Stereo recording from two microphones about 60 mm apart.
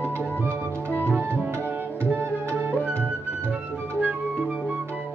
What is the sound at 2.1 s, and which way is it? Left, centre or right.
Tabla, right.